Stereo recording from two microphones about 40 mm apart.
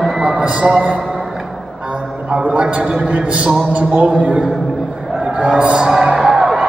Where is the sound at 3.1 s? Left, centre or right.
Right.